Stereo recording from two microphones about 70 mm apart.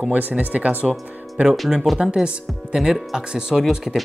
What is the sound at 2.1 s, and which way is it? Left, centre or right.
Speech, centre.